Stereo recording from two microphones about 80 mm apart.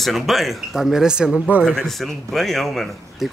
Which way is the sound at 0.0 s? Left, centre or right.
Centre.